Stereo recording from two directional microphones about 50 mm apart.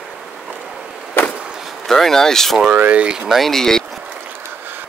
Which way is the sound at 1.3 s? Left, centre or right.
Centre.